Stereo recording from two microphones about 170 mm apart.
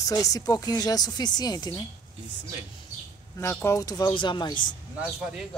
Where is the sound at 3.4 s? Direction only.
15° left (ahead or behind).